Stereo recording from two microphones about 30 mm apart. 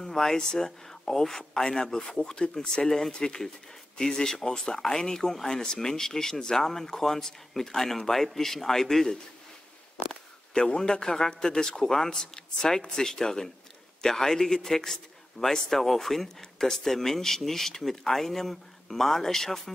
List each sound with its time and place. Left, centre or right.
0.0 s a sound: centre
0.4 s speech: left
10.5 s a man's voice: left; by 19.7 s centre